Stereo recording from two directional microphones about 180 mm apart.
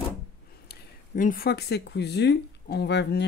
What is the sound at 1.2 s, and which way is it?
Speech, 55° left (ahead or behind).